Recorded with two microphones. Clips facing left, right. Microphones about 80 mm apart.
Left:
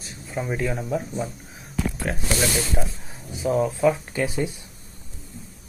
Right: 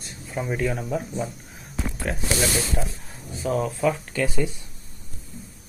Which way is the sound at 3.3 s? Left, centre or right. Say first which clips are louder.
Left 3 dB; centre.